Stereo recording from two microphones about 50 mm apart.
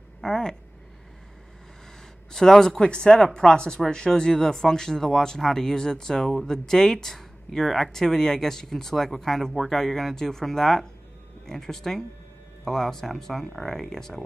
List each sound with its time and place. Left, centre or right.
0.2 s speech: centre
2.3 s speech: centre